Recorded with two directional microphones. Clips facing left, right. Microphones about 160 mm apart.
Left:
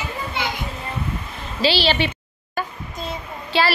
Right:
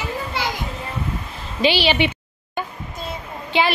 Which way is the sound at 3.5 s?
20° right (ahead or behind).